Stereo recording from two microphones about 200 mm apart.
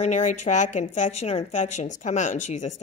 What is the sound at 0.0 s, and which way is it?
A woman's voice, 35° left (ahead or behind).